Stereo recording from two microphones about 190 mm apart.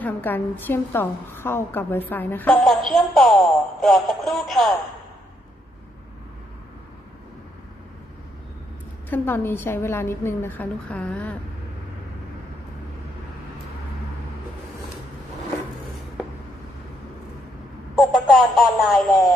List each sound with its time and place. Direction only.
0.0 s a woman's voice: 10° left (ahead or behind)
9.1 s a woman's voice: 10° left (ahead or behind)
17.9 s a sound: centre (ahead or behind)